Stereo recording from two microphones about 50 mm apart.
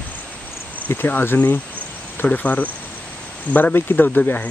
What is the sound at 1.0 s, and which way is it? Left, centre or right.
Speech, left.